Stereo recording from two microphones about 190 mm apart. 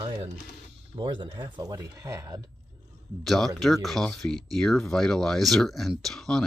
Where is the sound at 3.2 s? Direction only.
Centre (ahead or behind).